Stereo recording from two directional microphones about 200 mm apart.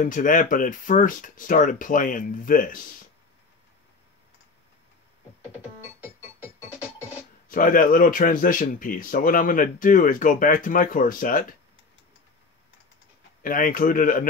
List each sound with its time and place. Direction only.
0.0 s speech: 40° left (ahead or behind)
7.4 s speech: 45° left (ahead or behind)
13.4 s speech: 45° left (ahead or behind)